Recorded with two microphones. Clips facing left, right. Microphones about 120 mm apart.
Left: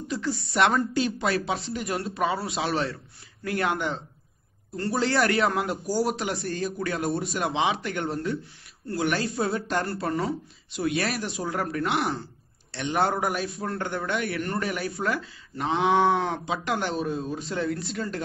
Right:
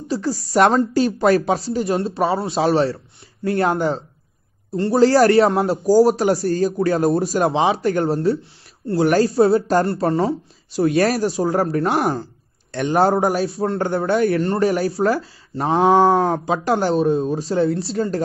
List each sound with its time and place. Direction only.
0.1 s a man's voice: 35° right (ahead or behind)